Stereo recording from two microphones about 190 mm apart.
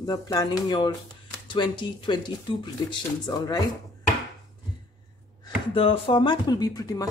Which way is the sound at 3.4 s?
20° left (ahead or behind).